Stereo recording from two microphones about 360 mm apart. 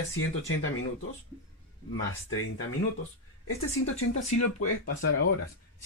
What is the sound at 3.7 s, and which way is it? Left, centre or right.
Speech, left.